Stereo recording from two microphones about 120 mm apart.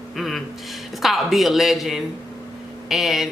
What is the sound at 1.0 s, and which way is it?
Speech, centre (ahead or behind).